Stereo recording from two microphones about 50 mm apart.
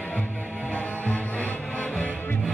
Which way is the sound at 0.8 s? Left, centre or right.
Left.